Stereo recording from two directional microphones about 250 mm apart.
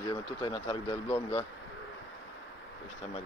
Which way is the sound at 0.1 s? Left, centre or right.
Centre.